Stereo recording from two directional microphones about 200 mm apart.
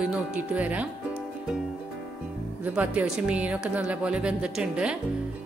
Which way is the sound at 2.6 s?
5° right (ahead or behind).